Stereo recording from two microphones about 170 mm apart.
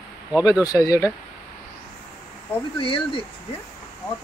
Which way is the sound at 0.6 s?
20° left (ahead or behind).